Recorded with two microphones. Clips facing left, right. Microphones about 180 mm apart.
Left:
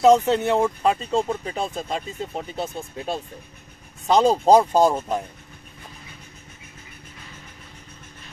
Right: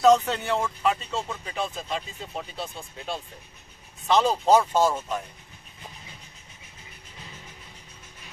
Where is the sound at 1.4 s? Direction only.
45° left (ahead or behind).